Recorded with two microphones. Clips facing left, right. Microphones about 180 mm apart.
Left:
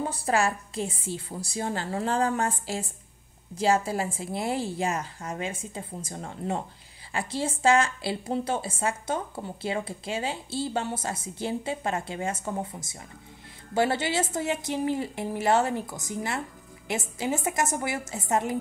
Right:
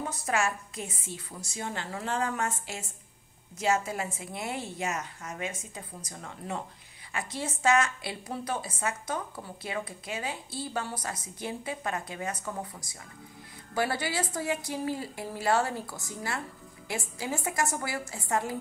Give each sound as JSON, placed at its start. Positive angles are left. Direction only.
{"t": 0.0, "sound": "a woman's voice", "side_deg": 30}